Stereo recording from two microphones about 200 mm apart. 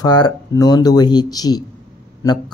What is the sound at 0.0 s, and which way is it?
Speech, 20° left (ahead or behind).